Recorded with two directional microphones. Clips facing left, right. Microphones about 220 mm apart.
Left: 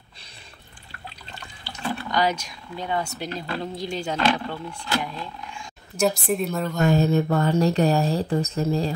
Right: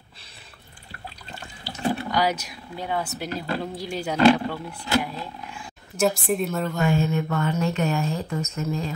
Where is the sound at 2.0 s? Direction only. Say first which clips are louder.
Even; 10° right (ahead or behind).